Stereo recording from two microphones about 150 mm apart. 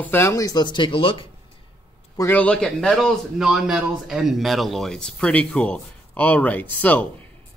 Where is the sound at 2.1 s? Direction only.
10° left (ahead or behind).